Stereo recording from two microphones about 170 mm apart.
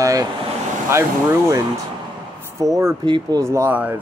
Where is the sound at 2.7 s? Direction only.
20° right (ahead or behind).